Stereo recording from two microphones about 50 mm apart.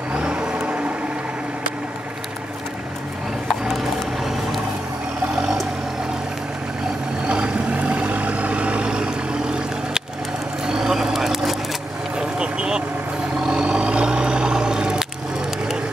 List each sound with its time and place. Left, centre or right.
0.2 s vehicle: centre
3.4 s music: centre
4.2 s vehicle: centre
7.2 s vehicle: centre
10.6 s a sound: centre
12.4 s vehicle: centre